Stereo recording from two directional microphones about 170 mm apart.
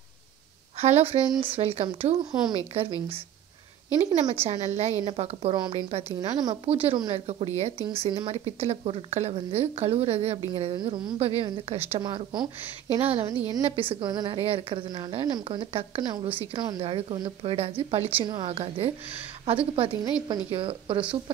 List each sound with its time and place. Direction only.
0.7 s a woman's voice: 40° right (ahead or behind)
4.0 s a woman's voice: 40° right (ahead or behind)